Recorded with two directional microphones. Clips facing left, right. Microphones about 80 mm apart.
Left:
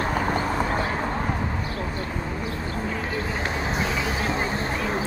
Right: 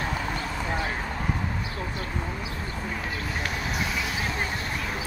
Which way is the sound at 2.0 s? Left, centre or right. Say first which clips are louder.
Left 3 dB; left.